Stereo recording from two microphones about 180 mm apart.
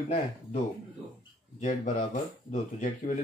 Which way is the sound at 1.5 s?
45° left (ahead or behind).